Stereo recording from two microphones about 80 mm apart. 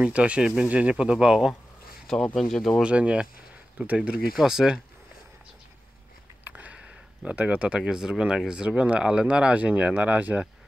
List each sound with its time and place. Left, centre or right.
0.0 s speech: centre
2.3 s speech: centre
2.8 s speech: centre
4.4 s speech: centre
6.4 s a sound: centre
7.2 s speech: centre